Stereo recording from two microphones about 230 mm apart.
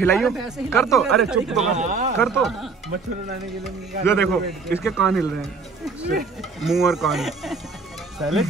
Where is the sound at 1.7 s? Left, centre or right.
Right.